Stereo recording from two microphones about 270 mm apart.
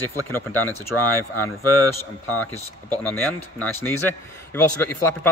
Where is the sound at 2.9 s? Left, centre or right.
Centre.